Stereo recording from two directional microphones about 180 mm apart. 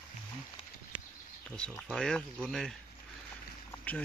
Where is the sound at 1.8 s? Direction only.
Centre (ahead or behind).